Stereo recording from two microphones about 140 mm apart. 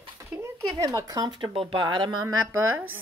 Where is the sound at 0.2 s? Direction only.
20° right (ahead or behind).